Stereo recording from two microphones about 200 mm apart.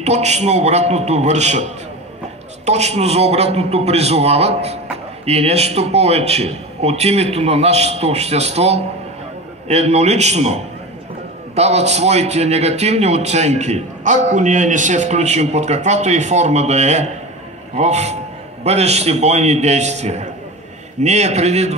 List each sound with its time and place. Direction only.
0.0 s a man's voice: 35° right (ahead or behind)